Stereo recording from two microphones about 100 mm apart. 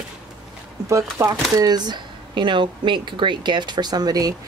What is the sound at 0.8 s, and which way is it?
Speech, 30° right (ahead or behind).